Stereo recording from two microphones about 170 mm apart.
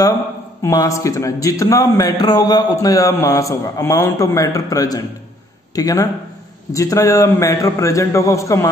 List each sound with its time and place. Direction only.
0.6 s a man's voice: 20° left (ahead or behind)